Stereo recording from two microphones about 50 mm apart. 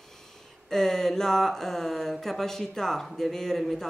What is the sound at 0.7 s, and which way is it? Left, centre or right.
Speech, centre.